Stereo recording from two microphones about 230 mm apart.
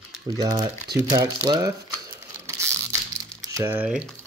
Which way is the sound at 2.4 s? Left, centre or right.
Centre.